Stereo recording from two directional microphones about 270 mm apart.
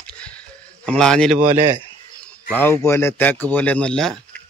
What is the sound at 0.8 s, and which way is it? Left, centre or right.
Speech, centre.